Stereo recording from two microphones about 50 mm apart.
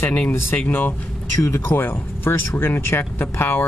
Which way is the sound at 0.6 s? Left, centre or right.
Left.